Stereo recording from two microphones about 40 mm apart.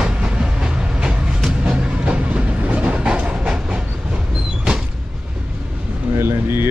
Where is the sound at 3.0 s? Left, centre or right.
Right.